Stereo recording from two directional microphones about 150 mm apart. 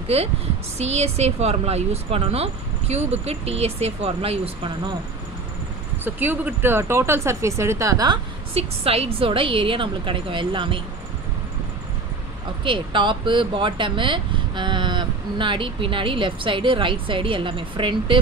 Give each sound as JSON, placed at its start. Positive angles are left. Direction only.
{"t": 0.1, "sound": "speech", "side_deg": -45}
{"t": 6.0, "sound": "speech", "side_deg": -15}
{"t": 8.5, "sound": "speech", "side_deg": -40}
{"t": 12.6, "sound": "speech", "side_deg": -35}